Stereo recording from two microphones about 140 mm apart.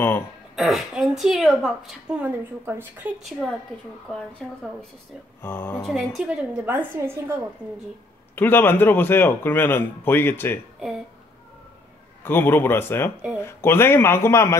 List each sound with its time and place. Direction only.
0.6 s speech: centre (ahead or behind)
4.4 s speech: 5° left (ahead or behind)
5.4 s speech: 15° left (ahead or behind)
5.9 s a woman's voice: centre (ahead or behind)
8.4 s speech: 15° left (ahead or behind)
12.3 s speech: 15° left (ahead or behind)